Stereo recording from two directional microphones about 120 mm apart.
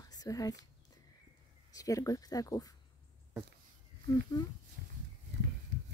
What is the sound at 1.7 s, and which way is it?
Speech, 30° left (ahead or behind).